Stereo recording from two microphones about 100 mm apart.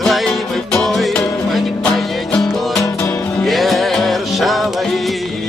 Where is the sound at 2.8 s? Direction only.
25° left (ahead or behind).